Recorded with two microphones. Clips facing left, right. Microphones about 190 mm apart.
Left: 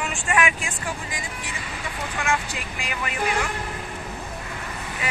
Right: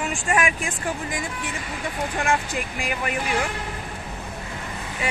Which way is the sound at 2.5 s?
45° right (ahead or behind).